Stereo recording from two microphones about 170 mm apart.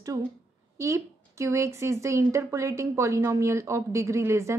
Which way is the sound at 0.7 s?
20° right (ahead or behind).